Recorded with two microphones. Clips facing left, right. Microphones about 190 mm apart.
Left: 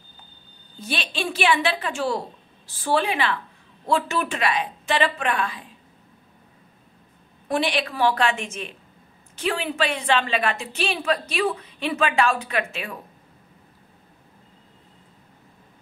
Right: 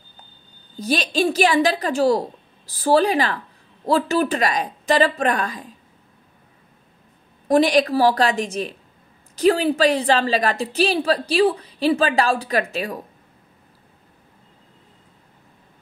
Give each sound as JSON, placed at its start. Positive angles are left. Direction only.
{"t": 0.7, "sound": "a woman's voice", "side_deg": -40}
{"t": 7.4, "sound": "a woman's voice", "side_deg": -40}